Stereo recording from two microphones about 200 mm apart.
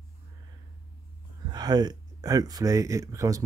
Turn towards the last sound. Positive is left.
turn(degrees=-15)  # may be behind; listen again after turning